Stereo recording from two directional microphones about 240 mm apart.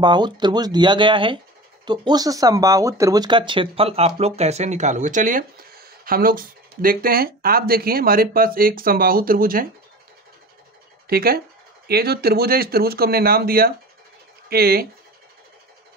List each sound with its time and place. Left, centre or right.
0.0 s speech: centre; by 9.7 s right
11.1 s speech: right